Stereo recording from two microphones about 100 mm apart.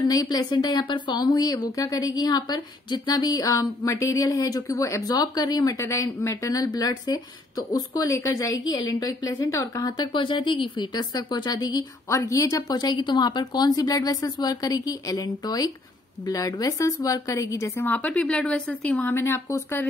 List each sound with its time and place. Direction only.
0.1 s speech: 40° left (ahead or behind)
10.1 s a woman's voice: 55° left (ahead or behind); by 19.1 s 10° left (ahead or behind)
19.1 s a woman's voice: 25° left (ahead or behind)